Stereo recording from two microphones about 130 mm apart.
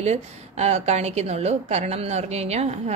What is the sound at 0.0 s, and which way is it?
A woman's voice, 55° right (ahead or behind).